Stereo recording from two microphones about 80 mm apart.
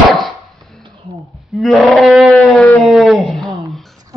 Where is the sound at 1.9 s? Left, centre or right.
Centre.